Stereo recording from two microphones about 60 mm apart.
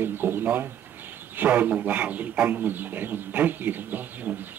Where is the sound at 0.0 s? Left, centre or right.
Right.